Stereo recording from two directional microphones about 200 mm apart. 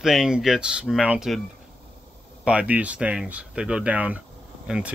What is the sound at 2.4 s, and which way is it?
Speech, 5° right (ahead or behind).